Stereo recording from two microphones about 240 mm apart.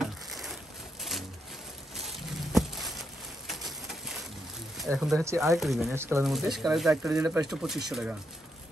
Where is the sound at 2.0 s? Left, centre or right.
Centre.